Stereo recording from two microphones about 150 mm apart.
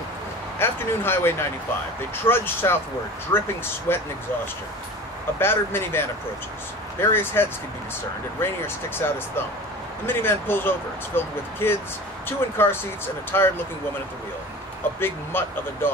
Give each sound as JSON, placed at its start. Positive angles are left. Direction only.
{"t": 0.6, "sound": "speech", "side_deg": 15}
{"t": 5.4, "sound": "speech", "side_deg": 15}
{"t": 15.0, "sound": "speech", "side_deg": 15}